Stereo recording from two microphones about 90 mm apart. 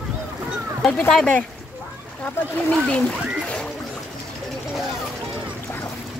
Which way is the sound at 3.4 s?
15° left (ahead or behind).